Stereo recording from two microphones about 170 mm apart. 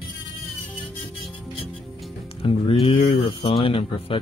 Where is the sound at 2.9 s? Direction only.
35° left (ahead or behind).